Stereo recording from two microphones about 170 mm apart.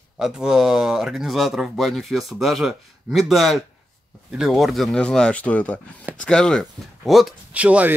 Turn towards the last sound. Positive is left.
turn(degrees=-10)  # may be behind; listen again after turning